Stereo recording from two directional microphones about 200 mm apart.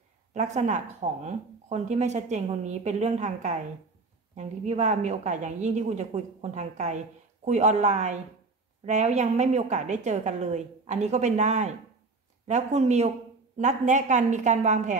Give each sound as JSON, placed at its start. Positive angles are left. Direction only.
{"t": 0.3, "sound": "speech", "side_deg": -35}